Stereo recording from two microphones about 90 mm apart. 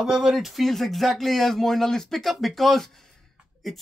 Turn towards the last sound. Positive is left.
turn(degrees=5)  # may be behind; listen again after turning